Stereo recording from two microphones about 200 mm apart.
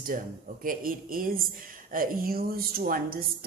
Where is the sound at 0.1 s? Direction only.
40° right (ahead or behind).